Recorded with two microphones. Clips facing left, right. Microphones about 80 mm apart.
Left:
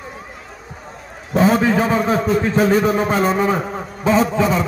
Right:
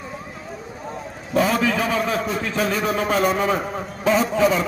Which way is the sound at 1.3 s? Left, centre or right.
Left.